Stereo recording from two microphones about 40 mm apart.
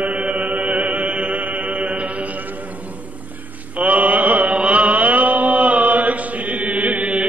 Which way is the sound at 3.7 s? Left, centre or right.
Right.